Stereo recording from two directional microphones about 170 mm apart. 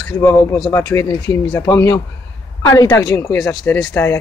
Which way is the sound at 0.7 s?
15° left (ahead or behind).